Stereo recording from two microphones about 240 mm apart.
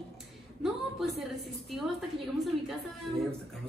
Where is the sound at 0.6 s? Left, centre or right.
Centre.